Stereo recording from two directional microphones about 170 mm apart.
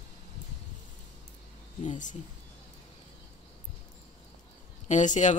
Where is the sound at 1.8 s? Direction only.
45° left (ahead or behind).